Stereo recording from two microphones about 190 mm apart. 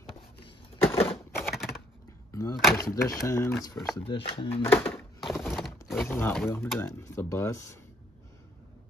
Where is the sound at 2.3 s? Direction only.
20° left (ahead or behind).